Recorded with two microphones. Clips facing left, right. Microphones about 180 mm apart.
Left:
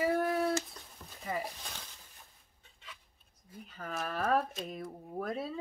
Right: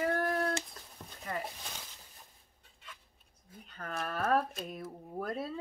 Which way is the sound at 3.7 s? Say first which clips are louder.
Even; centre (ahead or behind).